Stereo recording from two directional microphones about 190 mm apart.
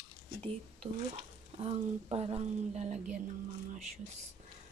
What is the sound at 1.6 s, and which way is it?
Speech, 30° right (ahead or behind).